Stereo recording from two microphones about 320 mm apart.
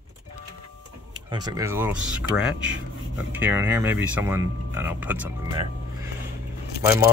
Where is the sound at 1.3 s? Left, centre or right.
Centre.